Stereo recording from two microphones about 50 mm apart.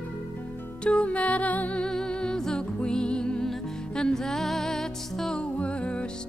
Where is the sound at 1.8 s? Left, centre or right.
Centre.